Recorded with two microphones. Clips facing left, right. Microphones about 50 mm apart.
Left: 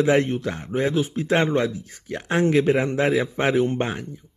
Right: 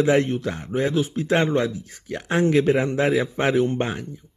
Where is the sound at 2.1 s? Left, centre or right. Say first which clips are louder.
Even; centre.